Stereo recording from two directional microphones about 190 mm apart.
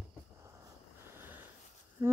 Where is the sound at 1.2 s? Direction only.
10° right (ahead or behind).